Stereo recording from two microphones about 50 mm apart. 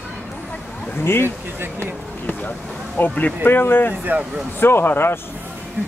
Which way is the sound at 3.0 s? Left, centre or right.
Left.